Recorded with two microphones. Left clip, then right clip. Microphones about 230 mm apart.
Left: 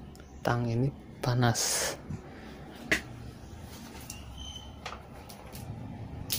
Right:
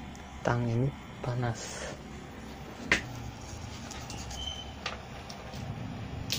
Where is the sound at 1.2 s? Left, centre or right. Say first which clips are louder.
Left 6 dB; left.